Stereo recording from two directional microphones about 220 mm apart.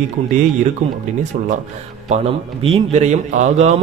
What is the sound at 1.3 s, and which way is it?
Speech, 35° right (ahead or behind).